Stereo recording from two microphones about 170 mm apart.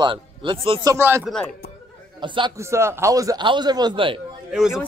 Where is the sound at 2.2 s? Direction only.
30° right (ahead or behind).